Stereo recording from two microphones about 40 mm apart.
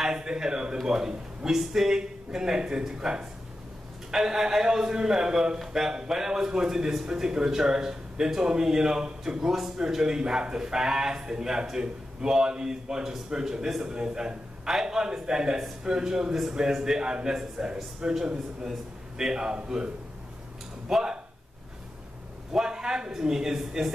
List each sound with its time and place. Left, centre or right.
0.0 s a man's voice: centre
20.9 s a man's voice: centre
22.5 s a man's voice: centre